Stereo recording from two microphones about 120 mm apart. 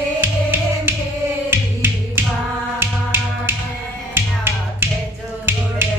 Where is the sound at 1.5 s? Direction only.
15° right (ahead or behind).